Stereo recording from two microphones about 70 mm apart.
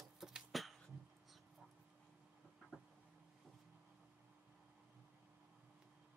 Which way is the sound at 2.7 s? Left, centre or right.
Centre.